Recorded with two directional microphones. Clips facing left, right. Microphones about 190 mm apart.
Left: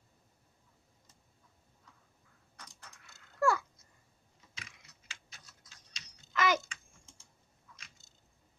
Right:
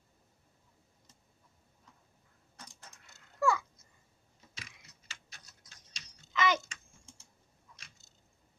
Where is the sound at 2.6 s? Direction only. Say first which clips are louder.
Right 1 dB; 25° right (ahead or behind).